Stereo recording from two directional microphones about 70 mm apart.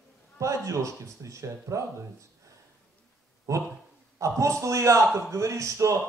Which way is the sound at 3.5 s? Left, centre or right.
Right.